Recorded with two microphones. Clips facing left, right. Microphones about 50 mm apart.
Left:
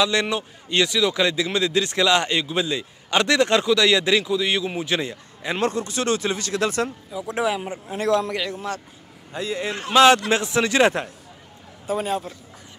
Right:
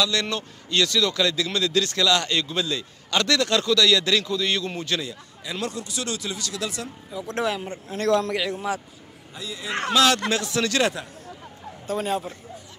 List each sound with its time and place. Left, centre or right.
0.0 s speech: left
5.0 s speech: left
7.1 s speech: centre
9.3 s speech: left
9.7 s speech: right
9.9 s speech: left
11.9 s a man's voice: centre